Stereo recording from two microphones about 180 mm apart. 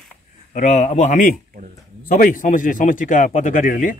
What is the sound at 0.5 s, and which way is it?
A man's voice, 40° left (ahead or behind).